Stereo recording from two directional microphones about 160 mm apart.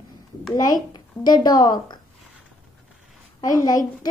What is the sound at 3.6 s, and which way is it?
Child singing, 20° left (ahead or behind).